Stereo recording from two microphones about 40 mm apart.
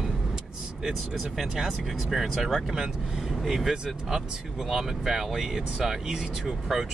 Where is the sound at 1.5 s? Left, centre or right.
Centre.